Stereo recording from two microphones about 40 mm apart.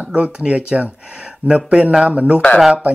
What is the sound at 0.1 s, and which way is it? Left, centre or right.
Speech, right.